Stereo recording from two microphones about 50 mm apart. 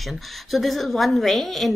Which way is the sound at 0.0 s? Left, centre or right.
Centre.